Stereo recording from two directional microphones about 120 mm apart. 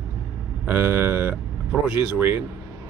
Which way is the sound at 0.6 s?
15° right (ahead or behind).